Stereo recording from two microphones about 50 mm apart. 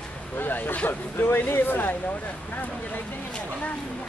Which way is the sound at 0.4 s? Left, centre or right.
Left.